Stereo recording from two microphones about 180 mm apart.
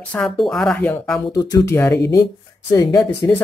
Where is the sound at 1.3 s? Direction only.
20° left (ahead or behind).